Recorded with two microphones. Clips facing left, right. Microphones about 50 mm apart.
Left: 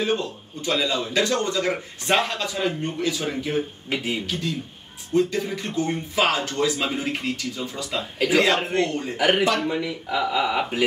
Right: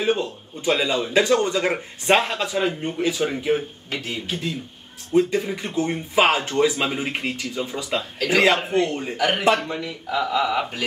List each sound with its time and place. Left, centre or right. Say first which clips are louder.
0.0 s a man's voice: right 2 dB; centre
3.9 s speech: left 3 dB; centre
4.3 s speech: even; centre
8.6 s a man's voice: right 2 dB; centre
9.1 s speech: right 1 dB; centre
10.3 s speech: right 2 dB; centre